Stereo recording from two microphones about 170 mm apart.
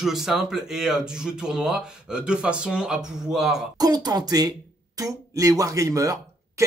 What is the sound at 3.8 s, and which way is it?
Speech, 20° right (ahead or behind).